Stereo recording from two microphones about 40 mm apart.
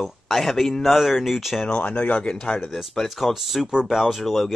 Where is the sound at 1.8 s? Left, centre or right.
Left.